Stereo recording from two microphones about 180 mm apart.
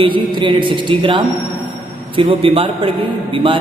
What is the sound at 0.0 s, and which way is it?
A man's voice, 25° right (ahead or behind).